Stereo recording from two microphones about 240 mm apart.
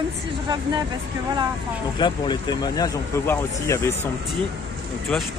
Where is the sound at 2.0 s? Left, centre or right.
Centre.